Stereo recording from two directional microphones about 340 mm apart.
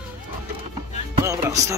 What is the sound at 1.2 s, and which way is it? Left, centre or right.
Speech, centre.